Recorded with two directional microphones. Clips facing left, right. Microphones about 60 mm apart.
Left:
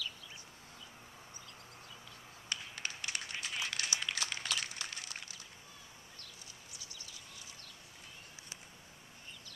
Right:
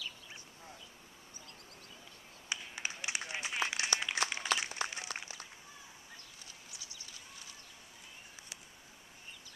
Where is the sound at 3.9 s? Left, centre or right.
Right.